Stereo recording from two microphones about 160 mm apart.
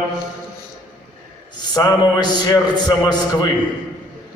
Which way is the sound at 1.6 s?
20° left (ahead or behind).